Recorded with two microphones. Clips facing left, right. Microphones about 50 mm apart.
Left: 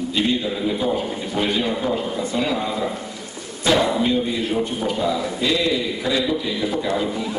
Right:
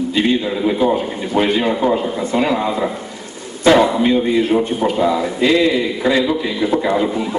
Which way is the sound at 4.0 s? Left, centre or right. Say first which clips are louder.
Right 6 dB; right.